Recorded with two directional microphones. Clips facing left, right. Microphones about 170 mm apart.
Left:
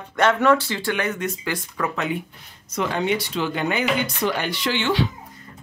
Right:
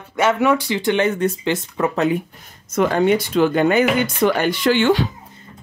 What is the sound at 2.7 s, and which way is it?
Speech, 50° right (ahead or behind).